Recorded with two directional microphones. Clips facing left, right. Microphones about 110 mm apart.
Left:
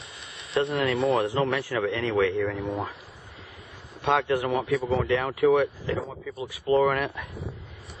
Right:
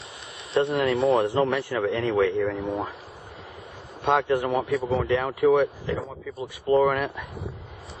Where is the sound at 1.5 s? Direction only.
20° right (ahead or behind).